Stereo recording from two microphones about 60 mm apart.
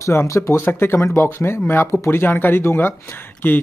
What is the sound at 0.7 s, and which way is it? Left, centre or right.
Speech, left.